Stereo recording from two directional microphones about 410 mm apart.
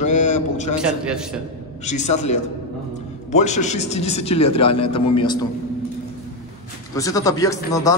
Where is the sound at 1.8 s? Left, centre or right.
Centre.